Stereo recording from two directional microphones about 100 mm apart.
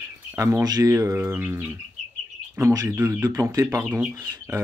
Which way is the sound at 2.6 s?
35° right (ahead or behind).